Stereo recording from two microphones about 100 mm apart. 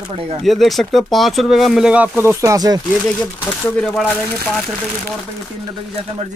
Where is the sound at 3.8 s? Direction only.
5° left (ahead or behind).